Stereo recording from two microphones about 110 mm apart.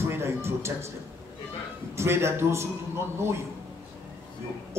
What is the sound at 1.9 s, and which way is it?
A man's voice, 25° right (ahead or behind).